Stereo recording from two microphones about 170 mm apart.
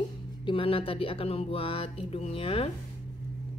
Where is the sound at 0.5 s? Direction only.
35° left (ahead or behind).